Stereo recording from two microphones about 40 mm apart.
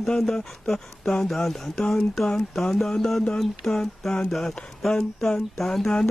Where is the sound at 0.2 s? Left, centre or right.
Centre.